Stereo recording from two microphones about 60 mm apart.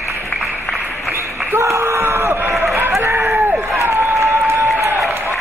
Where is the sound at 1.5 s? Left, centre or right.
Right.